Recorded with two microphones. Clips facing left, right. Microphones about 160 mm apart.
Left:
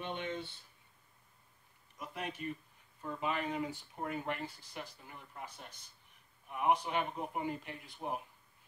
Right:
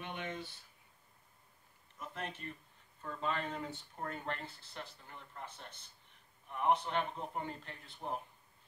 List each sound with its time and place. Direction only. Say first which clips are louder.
0.0 s speech: left 3 dB; 30° left (ahead or behind)
2.0 s speech: left 2 dB; 10° left (ahead or behind)